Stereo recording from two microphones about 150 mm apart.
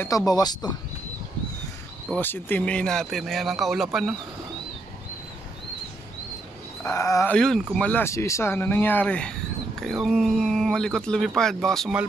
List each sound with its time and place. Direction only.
0.0 s speech: 25° left (ahead or behind)
2.1 s speech: 15° left (ahead or behind)
6.8 s speech: 20° left (ahead or behind)
7.3 s speech: 5° left (ahead or behind)